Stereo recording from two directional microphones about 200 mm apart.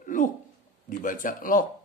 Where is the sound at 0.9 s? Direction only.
40° left (ahead or behind).